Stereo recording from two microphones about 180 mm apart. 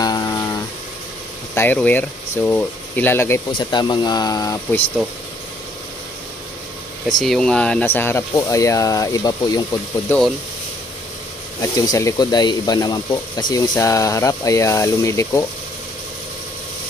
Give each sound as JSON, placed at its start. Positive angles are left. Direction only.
{"t": 0.0, "sound": "guitar", "side_deg": 20}
{"t": 1.5, "sound": "speech", "side_deg": 10}
{"t": 3.5, "sound": "speech", "side_deg": 25}
{"t": 7.1, "sound": "speech", "side_deg": 0}
{"t": 11.6, "sound": "speech", "side_deg": 20}